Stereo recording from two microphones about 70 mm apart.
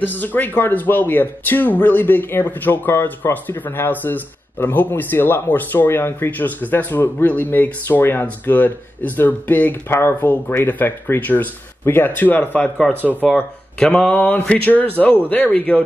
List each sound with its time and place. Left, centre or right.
0.0 s speech: left
12.8 s speech: centre